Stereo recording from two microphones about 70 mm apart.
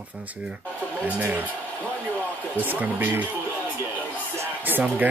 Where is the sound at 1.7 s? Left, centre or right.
Left.